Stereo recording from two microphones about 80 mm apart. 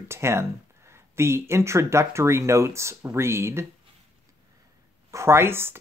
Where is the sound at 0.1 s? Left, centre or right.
Right.